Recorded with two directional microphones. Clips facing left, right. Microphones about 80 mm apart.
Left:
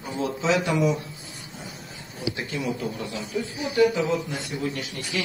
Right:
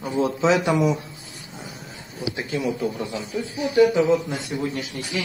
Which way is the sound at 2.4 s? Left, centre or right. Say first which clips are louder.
Right 6 dB; centre.